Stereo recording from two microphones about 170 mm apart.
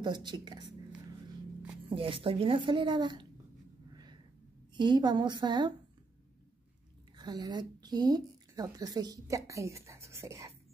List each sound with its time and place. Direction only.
0.0 s a woman's voice: 25° right (ahead or behind)
1.9 s a woman's voice: 30° right (ahead or behind)
3.9 s a sound: 25° right (ahead or behind)
4.7 s a woman's voice: 25° right (ahead or behind)
7.2 s a woman's voice: 25° right (ahead or behind)